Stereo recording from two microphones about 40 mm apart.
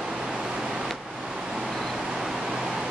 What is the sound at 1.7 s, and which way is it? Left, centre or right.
Vehicle, centre.